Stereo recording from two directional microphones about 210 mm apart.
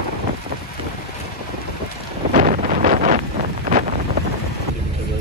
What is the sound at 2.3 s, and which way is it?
Wind noise, 35° right (ahead or behind).